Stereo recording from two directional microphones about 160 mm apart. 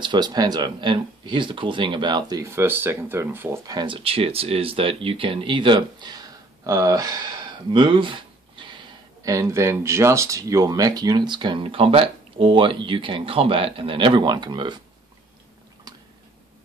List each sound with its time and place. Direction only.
0.0 s speech: 25° right (ahead or behind)
9.2 s speech: 20° right (ahead or behind)